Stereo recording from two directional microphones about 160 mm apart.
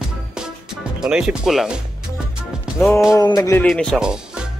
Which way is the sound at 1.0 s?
5° right (ahead or behind).